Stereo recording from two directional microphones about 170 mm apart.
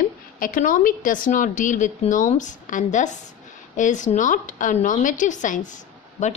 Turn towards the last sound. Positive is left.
turn(degrees=45)  # may be behind; listen again after turning